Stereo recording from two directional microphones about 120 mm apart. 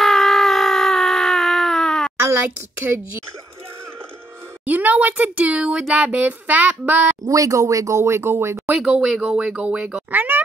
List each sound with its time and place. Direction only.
0.0 s a sound: centre (ahead or behind)
2.1 s a child's voice: 20° right (ahead or behind)
4.6 s speech: 15° right (ahead or behind)
7.2 s speech: 25° right (ahead or behind)
8.8 s speech: 5° right (ahead or behind)